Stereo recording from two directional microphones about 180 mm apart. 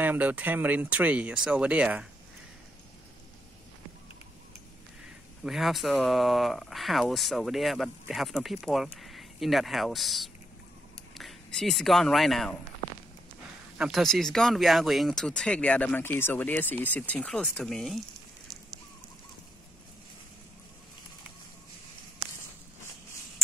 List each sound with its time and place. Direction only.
0.0 s speech: 10° right (ahead or behind)
5.4 s speech: centre (ahead or behind)
13.7 s speech: centre (ahead or behind)